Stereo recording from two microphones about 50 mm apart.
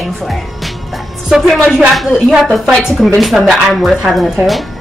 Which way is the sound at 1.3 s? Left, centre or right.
Centre.